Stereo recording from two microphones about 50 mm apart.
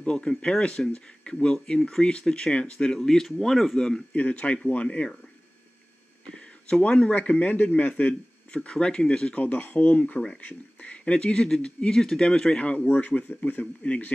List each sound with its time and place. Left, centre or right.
0.0 s speech: centre
4.1 s speech: left
4.8 s speech: centre
6.9 s speech: left
8.6 s speech: centre
9.4 s speech: left
12.8 s speech: left
13.8 s speech: left